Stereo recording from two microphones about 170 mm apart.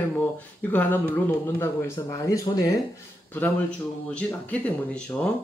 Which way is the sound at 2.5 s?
25° left (ahead or behind).